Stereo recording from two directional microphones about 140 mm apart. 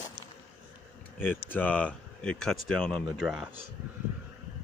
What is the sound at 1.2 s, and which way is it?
Speech, 15° left (ahead or behind).